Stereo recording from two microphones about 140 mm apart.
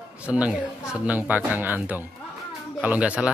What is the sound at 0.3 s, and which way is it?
Speech, 10° right (ahead or behind).